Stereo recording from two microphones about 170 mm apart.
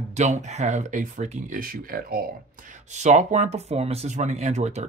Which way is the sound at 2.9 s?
45° right (ahead or behind).